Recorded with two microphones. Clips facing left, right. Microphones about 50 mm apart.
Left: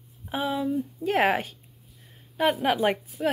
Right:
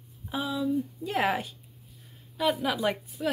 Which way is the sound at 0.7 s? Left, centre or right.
Left.